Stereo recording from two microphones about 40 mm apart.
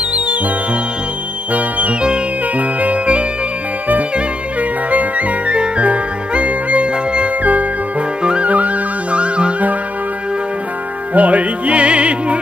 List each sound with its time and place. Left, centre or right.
1.5 s music: right
4.6 s music: right
8.2 s music: right
8.5 s music: right
11.1 s music: right